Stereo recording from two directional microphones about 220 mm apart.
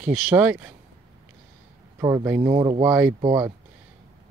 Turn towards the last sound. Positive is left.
turn(degrees=-15)  # may be behind; listen again after turning